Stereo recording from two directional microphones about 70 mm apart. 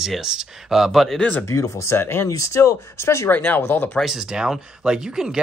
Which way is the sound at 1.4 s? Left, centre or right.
Left.